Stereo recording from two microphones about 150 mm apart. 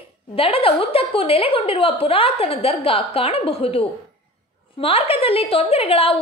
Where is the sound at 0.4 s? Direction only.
40° left (ahead or behind).